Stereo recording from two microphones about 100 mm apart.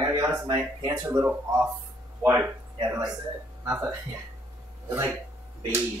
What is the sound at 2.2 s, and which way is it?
Speech, 20° right (ahead or behind).